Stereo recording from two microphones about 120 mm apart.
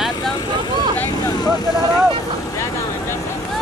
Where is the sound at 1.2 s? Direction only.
30° left (ahead or behind).